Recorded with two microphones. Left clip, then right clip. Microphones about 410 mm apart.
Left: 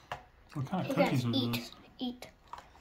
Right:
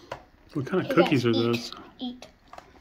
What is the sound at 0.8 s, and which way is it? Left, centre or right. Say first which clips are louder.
Speech: right 8 dB; centre.